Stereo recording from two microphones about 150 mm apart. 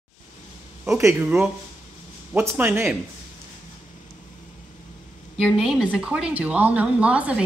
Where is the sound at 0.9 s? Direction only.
15° right (ahead or behind).